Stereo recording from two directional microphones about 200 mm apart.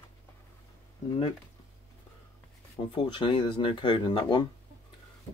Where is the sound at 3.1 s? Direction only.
25° left (ahead or behind).